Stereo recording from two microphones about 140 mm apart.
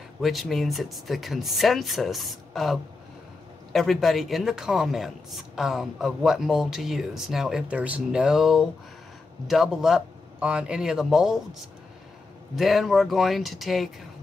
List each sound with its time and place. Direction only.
0.2 s a man's voice: centre (ahead or behind)
12.5 s a man's voice: centre (ahead or behind)